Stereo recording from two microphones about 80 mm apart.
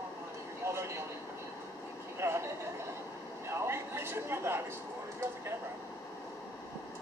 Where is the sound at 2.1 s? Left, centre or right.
Right.